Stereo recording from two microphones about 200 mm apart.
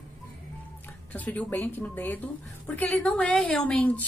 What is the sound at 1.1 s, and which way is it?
A woman's voice, 10° left (ahead or behind).